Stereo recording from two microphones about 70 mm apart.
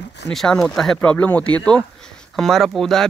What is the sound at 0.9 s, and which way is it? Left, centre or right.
Speech, left.